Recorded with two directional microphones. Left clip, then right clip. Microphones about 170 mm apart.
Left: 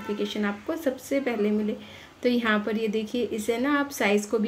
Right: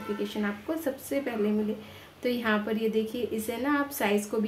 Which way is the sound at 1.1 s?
25° left (ahead or behind).